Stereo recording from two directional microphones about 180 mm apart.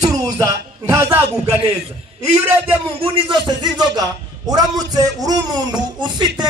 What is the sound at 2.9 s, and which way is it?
A man's voice, 30° right (ahead or behind).